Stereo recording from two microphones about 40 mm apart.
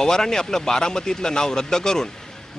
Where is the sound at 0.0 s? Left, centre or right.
Centre.